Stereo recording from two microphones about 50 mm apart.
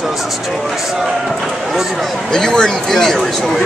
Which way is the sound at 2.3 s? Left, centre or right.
Centre.